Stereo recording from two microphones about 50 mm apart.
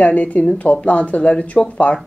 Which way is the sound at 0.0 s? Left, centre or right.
Left.